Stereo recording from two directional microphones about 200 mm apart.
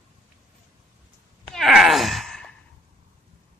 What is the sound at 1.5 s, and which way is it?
Sigh, centre (ahead or behind).